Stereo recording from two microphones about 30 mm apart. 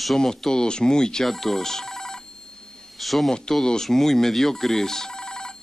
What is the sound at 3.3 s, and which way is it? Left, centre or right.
Speech, centre.